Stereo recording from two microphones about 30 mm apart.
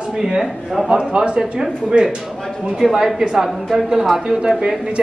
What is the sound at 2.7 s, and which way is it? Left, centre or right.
Speech, centre.